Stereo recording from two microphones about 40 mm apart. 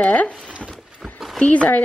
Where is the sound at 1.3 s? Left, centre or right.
Left.